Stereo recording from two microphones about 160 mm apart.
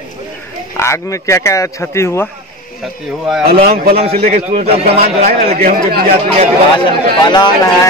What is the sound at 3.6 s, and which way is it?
Speech, 70° right (ahead or behind).